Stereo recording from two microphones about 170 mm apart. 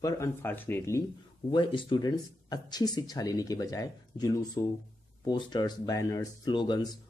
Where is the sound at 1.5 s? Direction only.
30° left (ahead or behind).